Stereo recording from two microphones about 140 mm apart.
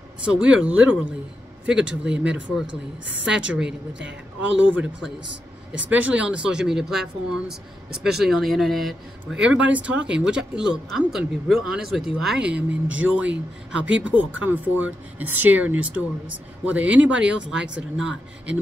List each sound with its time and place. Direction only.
0.2 s speech: 5° right (ahead or behind)
5.7 s speech: 10° right (ahead or behind)